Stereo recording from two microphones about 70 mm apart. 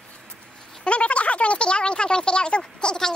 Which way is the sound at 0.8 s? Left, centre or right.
Centre.